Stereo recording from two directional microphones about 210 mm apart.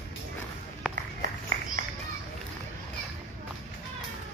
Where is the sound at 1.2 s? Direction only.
40° right (ahead or behind).